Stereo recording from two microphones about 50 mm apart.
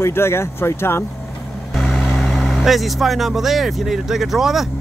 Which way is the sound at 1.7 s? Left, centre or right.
Centre.